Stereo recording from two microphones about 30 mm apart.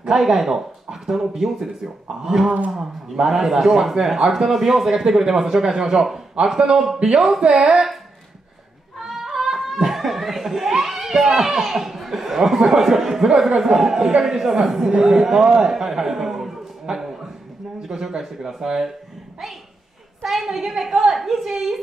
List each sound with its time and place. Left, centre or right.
0.2 s a man's voice: centre
7.0 s speech: right
9.0 s a sound: centre
9.8 s chuckle: centre
10.7 s music: centre
11.4 s a man's voice: centre
16.9 s a sound: centre
17.8 s a man's voice: centre
20.2 s a man's voice: centre